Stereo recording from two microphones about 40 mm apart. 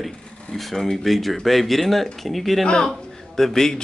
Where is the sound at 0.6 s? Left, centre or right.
Centre.